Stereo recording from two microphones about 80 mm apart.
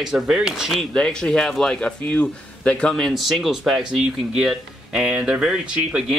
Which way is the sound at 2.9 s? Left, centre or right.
Centre.